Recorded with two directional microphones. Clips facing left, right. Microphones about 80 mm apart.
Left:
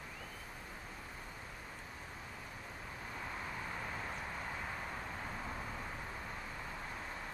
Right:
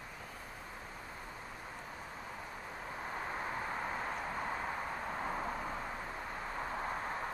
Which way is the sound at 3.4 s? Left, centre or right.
Right.